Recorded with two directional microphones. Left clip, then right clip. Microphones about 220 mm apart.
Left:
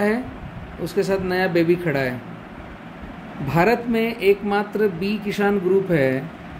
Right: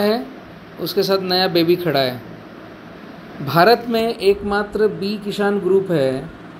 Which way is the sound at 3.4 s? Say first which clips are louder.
Right 5 dB; centre (ahead or behind).